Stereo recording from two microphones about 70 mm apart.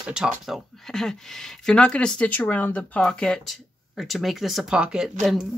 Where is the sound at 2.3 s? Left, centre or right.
Left.